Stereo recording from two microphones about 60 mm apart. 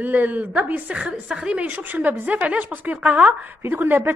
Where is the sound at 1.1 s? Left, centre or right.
Centre.